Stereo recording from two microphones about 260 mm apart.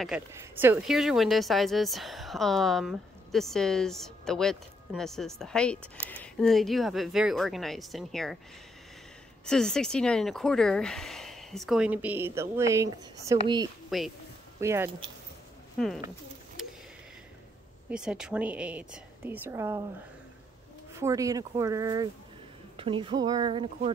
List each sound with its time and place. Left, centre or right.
0.0 s speech: centre
9.5 s speech: centre
13.8 s speech: centre
15.8 s speech: centre
16.6 s a sound: centre
17.8 s speech: centre
21.0 s speech: centre